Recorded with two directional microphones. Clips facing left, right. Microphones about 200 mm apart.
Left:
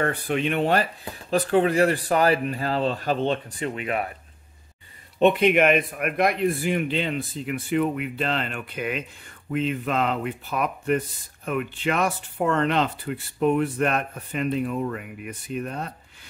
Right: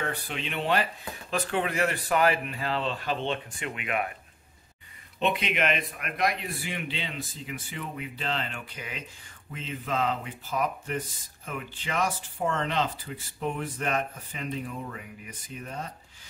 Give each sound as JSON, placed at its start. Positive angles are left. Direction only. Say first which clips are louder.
{"t": 0.0, "sound": "speech", "louder": "left 9 dB", "side_deg": 55}
{"t": 1.3, "sound": "speech", "louder": "left 9 dB", "side_deg": 35}
{"t": 5.2, "sound": "speech", "louder": "left 10 dB", "side_deg": 50}